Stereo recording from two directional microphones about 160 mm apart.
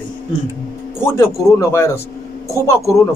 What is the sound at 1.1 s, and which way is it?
A man's voice, 15° left (ahead or behind).